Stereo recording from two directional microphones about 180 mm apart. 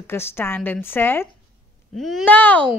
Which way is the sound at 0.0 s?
15° left (ahead or behind).